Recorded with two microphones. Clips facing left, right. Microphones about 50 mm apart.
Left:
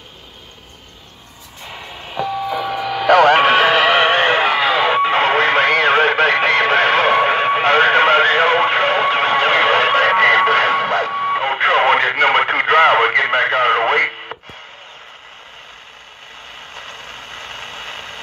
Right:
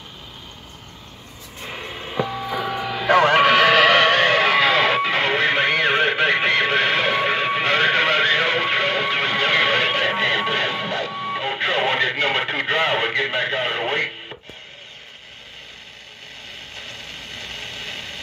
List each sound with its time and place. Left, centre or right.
3.0 s music: left
3.3 s music: left
3.7 s music: centre
4.1 s a sound: left
4.5 s music: centre
5.0 s radio: left
16.7 s vehicle: left